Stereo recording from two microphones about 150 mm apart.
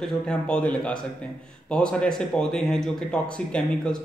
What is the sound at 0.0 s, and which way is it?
Speech, 5° left (ahead or behind).